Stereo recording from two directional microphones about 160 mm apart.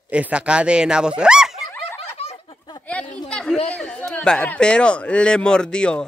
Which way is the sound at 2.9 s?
5° left (ahead or behind).